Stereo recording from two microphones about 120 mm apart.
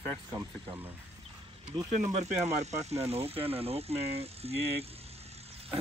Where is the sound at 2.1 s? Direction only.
70° right (ahead or behind).